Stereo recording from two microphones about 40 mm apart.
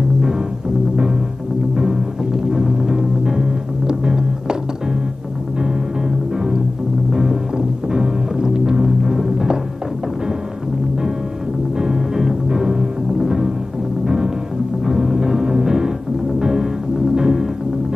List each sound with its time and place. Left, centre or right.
1.8 s music: centre
5.6 s music: centre
11.8 s music: centre